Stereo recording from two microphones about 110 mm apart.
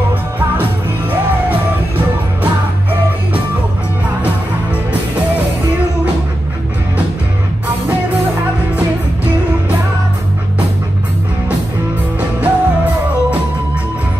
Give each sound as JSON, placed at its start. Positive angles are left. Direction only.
{"t": 12.2, "sound": "music", "side_deg": -15}